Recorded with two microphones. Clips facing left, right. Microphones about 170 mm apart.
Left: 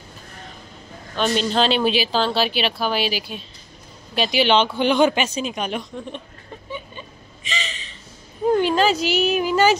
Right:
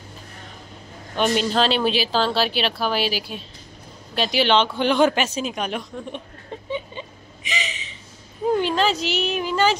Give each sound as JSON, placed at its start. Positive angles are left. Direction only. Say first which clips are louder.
{"t": 1.1, "sound": "speech", "louder": "even", "side_deg": -10}
{"t": 6.7, "sound": "a sound", "louder": "right 5 dB", "side_deg": -20}
{"t": 8.5, "sound": "speech", "louder": "left 3 dB", "side_deg": 0}